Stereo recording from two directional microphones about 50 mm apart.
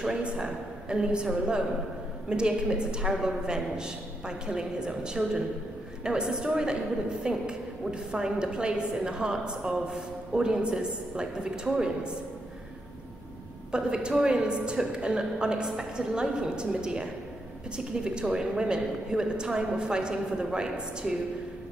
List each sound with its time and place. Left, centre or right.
0.0 s a woman's voice: centre
13.7 s a woman's voice: centre